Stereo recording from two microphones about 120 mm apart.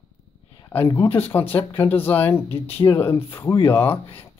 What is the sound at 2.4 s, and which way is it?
Speech, 55° left (ahead or behind).